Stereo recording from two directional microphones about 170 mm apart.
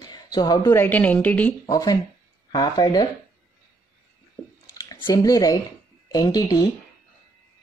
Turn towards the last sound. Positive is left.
turn(degrees=20)  # may be behind; listen again after turning